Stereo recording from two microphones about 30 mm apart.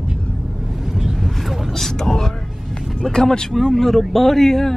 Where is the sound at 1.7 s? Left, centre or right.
Centre.